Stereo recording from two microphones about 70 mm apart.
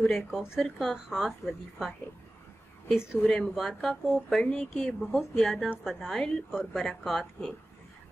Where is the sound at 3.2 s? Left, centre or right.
Centre.